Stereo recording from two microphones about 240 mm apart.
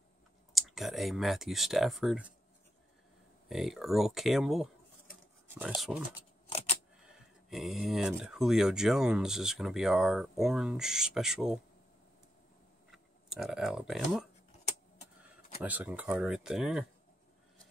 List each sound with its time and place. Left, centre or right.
0.6 s speech: centre
3.4 s speech: centre
6.5 s camera: left
7.4 s speech: centre
12.9 s speech: centre
15.6 s speech: centre